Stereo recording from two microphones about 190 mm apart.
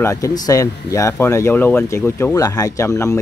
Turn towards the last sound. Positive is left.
turn(degrees=15)  # may be behind; listen again after turning